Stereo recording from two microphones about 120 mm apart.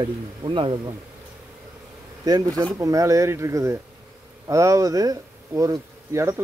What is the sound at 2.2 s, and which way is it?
Speech, 30° right (ahead or behind).